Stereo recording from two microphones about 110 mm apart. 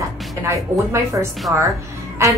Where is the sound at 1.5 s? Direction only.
10° right (ahead or behind).